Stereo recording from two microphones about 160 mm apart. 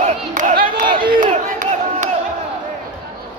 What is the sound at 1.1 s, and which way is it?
Crowd, 55° right (ahead or behind).